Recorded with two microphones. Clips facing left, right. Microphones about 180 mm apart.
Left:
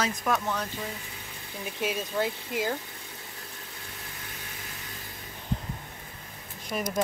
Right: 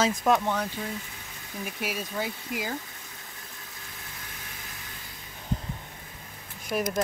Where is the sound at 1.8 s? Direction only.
Centre (ahead or behind).